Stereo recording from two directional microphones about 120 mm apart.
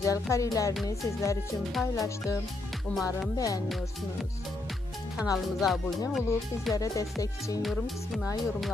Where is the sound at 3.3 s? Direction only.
30° left (ahead or behind).